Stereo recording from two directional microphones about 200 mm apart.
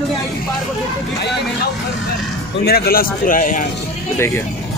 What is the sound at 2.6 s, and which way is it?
A man's voice, 50° left (ahead or behind).